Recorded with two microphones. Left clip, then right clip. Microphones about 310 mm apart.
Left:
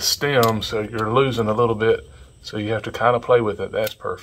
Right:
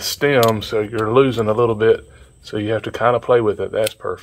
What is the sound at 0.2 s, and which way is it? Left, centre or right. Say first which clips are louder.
Speech: right 6 dB; right.